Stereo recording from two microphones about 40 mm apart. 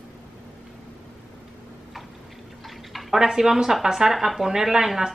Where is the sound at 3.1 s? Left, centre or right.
Centre.